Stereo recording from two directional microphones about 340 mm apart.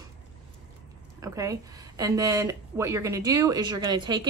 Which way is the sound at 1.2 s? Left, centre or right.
Centre.